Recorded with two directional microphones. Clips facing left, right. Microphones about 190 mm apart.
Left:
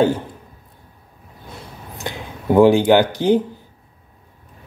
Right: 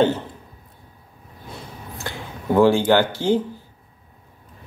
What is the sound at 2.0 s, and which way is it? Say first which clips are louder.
Speech: left 3 dB; 15° left (ahead or behind).